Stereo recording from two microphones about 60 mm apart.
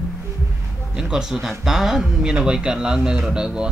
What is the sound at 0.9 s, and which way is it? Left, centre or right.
A man's voice, centre.